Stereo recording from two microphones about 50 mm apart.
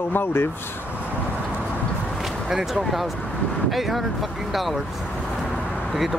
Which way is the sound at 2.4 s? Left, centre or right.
Centre.